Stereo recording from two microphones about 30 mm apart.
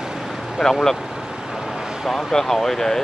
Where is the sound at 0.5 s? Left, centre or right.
Centre.